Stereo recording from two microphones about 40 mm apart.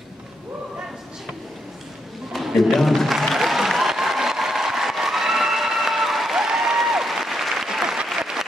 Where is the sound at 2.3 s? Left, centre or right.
Centre.